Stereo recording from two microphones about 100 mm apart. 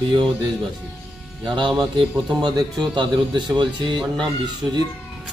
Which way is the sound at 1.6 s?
50° right (ahead or behind).